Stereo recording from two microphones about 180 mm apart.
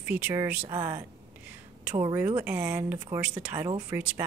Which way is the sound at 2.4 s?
10° right (ahead or behind).